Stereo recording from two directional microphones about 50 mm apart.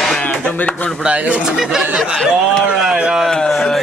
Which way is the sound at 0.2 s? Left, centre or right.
Left.